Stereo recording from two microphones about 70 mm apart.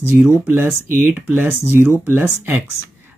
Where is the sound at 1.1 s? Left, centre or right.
Right.